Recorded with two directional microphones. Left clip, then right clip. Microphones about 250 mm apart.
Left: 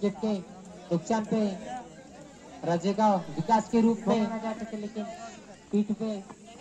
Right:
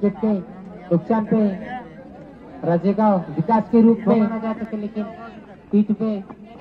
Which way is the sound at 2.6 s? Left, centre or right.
Right.